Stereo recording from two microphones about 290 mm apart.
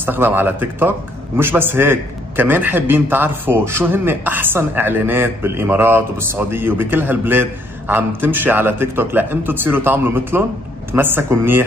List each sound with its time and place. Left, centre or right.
0.0 s a man's voice: centre